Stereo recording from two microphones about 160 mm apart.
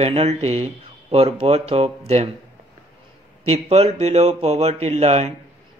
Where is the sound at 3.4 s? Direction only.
40° right (ahead or behind).